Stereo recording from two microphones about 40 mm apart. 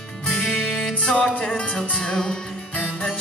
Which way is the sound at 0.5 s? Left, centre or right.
Left.